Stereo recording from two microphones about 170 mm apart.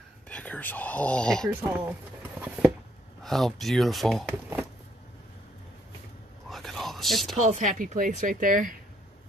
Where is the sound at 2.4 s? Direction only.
5° right (ahead or behind).